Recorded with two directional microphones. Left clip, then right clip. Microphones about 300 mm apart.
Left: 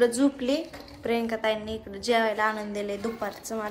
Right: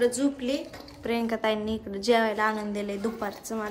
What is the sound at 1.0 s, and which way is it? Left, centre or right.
A woman's voice, centre.